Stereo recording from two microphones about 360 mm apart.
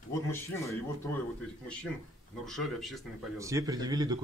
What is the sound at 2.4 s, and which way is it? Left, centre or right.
A man's voice, centre.